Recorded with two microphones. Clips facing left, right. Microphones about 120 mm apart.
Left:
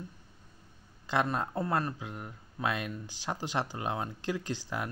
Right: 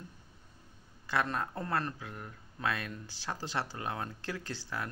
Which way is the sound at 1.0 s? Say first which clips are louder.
Left 3 dB; 20° left (ahead or behind).